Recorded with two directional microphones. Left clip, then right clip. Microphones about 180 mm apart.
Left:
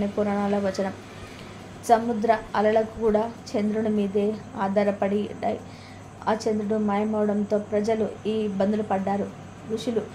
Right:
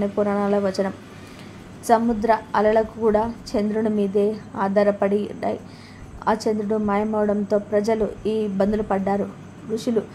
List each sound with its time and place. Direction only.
0.0 s a woman's voice: 15° right (ahead or behind)